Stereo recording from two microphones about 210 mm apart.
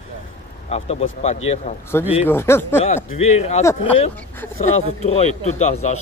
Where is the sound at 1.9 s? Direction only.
10° left (ahead or behind).